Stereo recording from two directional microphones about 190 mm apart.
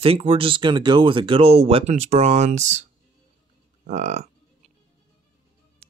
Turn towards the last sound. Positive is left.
turn(degrees=-35)  # may be behind; listen again after turning